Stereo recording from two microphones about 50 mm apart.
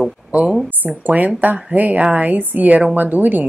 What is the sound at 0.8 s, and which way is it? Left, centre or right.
A woman's voice, right.